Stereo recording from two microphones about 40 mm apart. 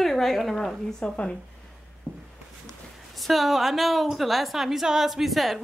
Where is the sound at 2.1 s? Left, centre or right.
Left.